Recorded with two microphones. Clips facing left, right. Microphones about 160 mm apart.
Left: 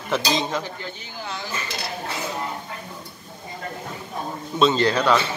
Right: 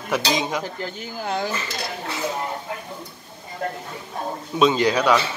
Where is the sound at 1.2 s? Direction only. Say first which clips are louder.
Right 8 dB; 50° right (ahead or behind).